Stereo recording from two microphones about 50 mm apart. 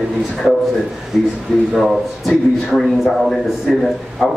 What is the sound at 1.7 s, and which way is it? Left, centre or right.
A man's voice, centre.